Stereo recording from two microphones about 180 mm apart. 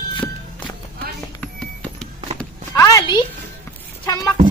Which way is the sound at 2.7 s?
20° left (ahead or behind).